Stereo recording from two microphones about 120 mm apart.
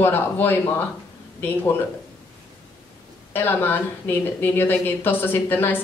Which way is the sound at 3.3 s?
15° left (ahead or behind).